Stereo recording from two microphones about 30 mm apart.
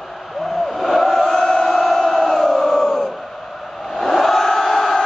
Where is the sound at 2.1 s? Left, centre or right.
Centre.